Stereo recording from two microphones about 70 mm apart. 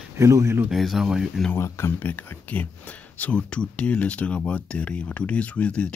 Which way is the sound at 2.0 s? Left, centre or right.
Left.